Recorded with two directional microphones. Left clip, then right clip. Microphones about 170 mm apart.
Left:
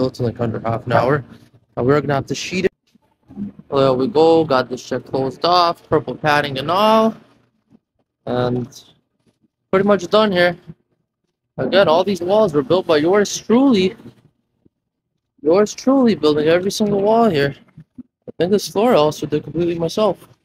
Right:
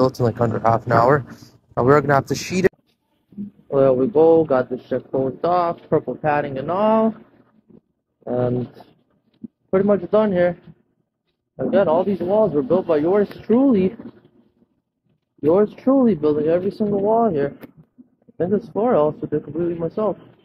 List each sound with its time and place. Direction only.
0.0 s speech: centre (ahead or behind); by 2.0 s 20° left (ahead or behind)
2.0 s speech: 5° left (ahead or behind)
3.6 s speech: 10° left (ahead or behind)
8.3 s speech: 20° left (ahead or behind)
15.5 s speech: 15° left (ahead or behind); by 19.9 s 40° left (ahead or behind)
19.9 s speech: 30° left (ahead or behind)